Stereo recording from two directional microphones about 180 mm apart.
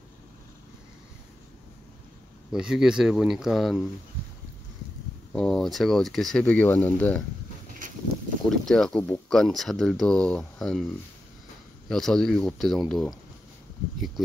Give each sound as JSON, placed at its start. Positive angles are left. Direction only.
{"t": 2.5, "sound": "speech", "side_deg": -5}
{"t": 5.3, "sound": "speech", "side_deg": 0}
{"t": 8.5, "sound": "speech", "side_deg": 5}
{"t": 11.9, "sound": "speech", "side_deg": 0}